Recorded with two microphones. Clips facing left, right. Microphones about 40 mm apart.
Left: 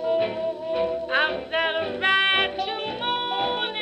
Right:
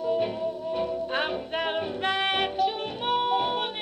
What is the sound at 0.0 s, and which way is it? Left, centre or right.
Music, left.